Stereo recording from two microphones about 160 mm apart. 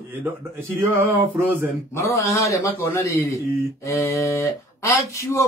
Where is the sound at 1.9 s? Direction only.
15° left (ahead or behind).